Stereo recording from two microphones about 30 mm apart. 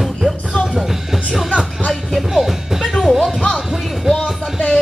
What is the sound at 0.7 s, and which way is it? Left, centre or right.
Music, centre.